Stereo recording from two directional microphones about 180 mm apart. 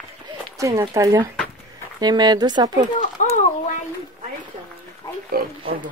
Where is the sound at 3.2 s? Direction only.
45° left (ahead or behind).